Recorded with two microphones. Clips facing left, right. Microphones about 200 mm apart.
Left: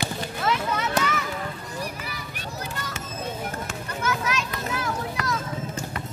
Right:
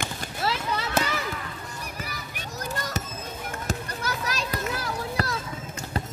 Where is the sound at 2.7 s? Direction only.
40° right (ahead or behind).